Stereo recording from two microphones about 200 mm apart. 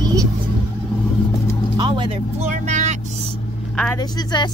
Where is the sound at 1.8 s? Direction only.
25° right (ahead or behind).